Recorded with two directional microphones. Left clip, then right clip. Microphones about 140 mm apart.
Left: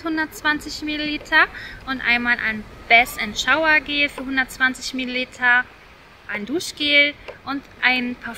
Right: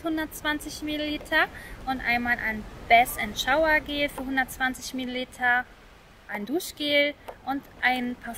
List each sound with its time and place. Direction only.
0.0 s speech: 45° right (ahead or behind)